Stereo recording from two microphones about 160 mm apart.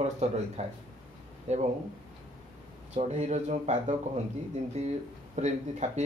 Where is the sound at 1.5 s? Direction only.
45° right (ahead or behind).